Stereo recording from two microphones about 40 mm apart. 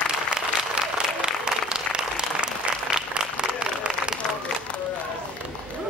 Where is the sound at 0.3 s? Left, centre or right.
Right.